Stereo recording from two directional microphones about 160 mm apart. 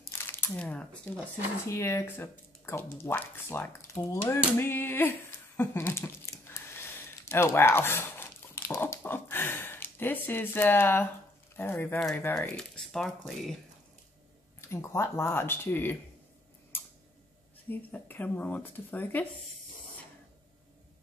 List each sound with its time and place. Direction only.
0.1 s speech: 15° left (ahead or behind)
5.6 s a sound: 15° left (ahead or behind)
11.5 s speech: 10° left (ahead or behind)
14.7 s speech: 15° left (ahead or behind)
17.6 s speech: 10° left (ahead or behind)